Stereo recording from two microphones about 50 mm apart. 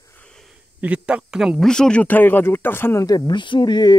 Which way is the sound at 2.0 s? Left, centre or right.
Left.